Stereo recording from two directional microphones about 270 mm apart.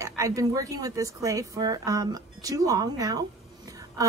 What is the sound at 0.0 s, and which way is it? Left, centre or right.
Speech, centre.